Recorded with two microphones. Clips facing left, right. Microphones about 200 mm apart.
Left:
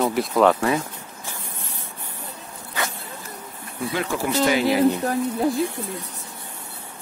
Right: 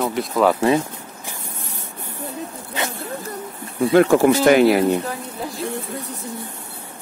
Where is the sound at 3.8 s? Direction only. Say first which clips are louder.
Right 12 dB; 55° right (ahead or behind).